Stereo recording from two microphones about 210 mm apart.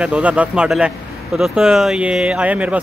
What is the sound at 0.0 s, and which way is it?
A man's voice, 5° right (ahead or behind).